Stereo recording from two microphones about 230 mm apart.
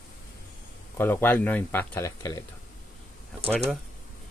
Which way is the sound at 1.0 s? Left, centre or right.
Centre.